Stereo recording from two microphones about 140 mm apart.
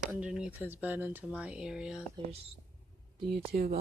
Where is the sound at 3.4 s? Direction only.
50° right (ahead or behind).